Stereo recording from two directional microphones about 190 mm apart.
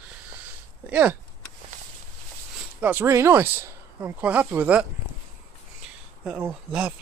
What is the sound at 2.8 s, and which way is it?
Speech, 10° right (ahead or behind).